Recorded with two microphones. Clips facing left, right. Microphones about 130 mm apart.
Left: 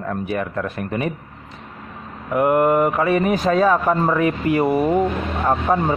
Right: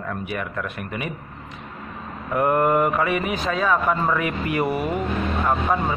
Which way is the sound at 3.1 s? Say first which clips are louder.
Left 6 dB; 40° left (ahead or behind).